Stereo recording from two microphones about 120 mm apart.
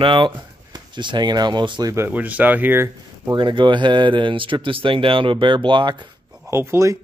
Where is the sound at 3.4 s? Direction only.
40° right (ahead or behind).